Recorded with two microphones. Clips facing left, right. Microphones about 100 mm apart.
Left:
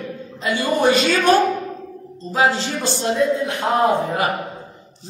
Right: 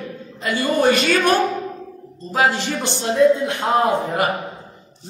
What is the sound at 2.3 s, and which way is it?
Speech, 15° left (ahead or behind).